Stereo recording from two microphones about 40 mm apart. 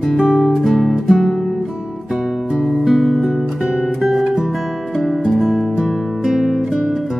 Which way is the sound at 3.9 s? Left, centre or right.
Centre.